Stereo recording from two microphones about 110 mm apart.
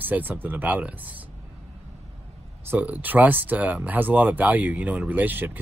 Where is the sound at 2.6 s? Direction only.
15° right (ahead or behind).